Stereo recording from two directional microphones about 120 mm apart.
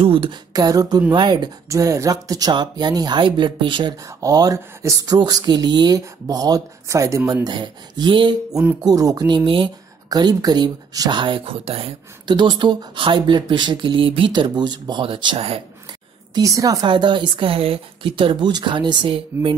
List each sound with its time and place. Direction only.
0.0 s speech: 45° right (ahead or behind)
1.7 s speech: 25° right (ahead or behind); by 3.9 s 45° right (ahead or behind)
4.0 s speech: 30° right (ahead or behind)
7.4 s speech: 40° right (ahead or behind)
12.3 s speech: 40° right (ahead or behind)
16.3 s speech: 30° right (ahead or behind)
16.8 s speech: 40° right (ahead or behind)